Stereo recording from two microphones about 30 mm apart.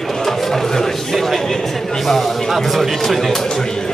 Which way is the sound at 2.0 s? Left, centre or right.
Centre.